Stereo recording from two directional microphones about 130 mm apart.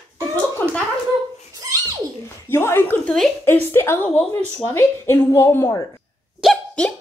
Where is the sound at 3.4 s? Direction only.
15° left (ahead or behind).